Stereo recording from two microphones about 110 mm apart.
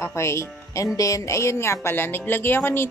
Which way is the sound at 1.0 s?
30° left (ahead or behind).